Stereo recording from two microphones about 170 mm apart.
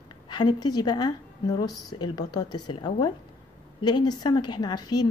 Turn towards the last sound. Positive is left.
turn(degrees=25)  # may be behind; listen again after turning